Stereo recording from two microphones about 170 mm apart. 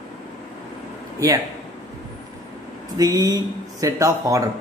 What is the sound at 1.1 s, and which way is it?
Speech, 20° right (ahead or behind).